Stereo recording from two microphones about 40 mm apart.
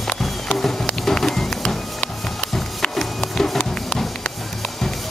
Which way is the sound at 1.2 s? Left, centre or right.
Centre.